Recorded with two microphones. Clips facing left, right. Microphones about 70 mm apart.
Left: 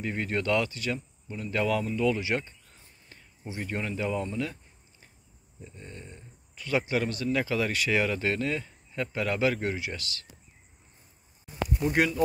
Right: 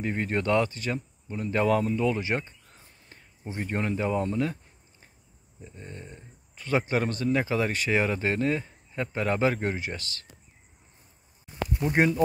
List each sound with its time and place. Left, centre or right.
0.0 s a man's voice: right
5.6 s a man's voice: right
11.8 s speech: right